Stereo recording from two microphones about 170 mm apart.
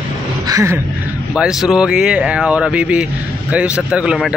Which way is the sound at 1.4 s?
5° right (ahead or behind).